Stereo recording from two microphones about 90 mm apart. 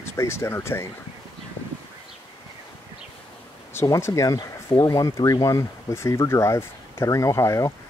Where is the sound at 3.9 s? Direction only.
35° left (ahead or behind).